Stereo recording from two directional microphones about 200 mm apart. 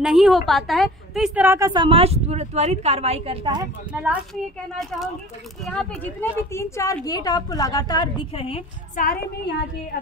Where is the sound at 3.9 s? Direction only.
5° right (ahead or behind); by 9.0 s 30° left (ahead or behind).